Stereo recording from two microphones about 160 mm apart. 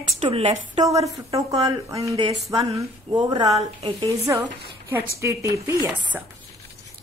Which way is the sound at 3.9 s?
20° right (ahead or behind).